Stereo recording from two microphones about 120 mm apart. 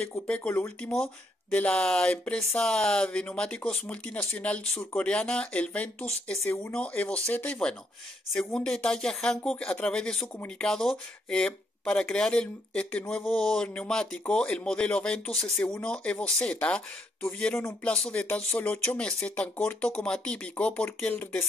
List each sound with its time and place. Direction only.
0.3 s speech: 10° left (ahead or behind)
15.4 s speech: 20° left (ahead or behind)
15.7 s speech: 10° left (ahead or behind)